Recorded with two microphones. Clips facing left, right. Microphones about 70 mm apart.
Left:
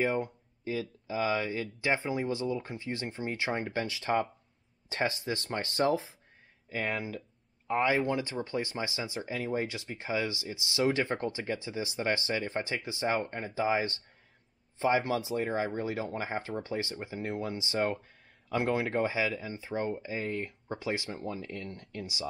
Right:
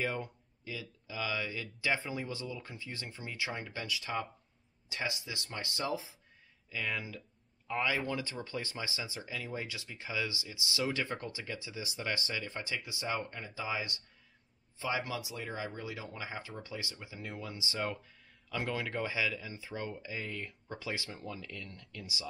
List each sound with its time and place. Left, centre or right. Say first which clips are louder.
0.0 s speech: left 6 dB; left